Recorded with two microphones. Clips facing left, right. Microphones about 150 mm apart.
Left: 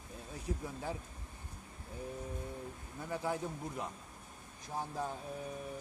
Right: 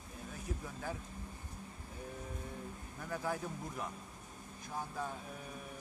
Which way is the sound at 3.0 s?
20° left (ahead or behind).